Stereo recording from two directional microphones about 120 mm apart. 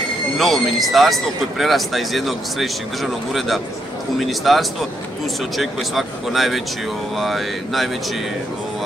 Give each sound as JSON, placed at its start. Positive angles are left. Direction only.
{"t": 0.4, "sound": "speech", "side_deg": 0}